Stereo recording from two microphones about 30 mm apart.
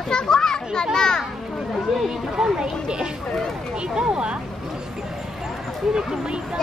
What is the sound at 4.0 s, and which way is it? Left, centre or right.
Speech, right.